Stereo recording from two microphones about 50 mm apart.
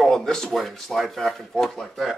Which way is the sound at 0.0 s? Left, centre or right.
Centre.